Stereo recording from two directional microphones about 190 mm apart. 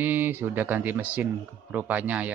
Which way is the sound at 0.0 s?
10° right (ahead or behind).